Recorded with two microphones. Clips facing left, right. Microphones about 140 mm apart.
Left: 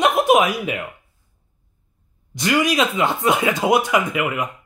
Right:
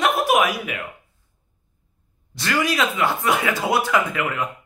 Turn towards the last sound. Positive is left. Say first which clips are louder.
# left 2 dB
turn(degrees=15)  # may be behind; listen again after turning